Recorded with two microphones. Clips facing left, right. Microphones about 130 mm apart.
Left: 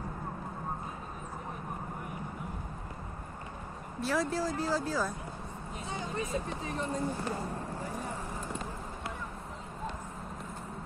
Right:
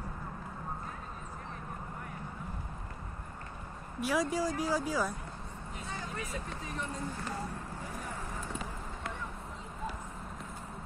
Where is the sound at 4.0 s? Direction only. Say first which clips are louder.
Even; 10° right (ahead or behind).